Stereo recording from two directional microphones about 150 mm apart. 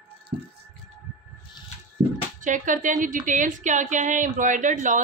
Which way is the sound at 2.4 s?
60° right (ahead or behind).